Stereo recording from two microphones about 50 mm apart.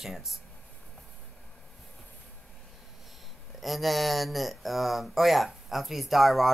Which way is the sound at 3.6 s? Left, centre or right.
Centre.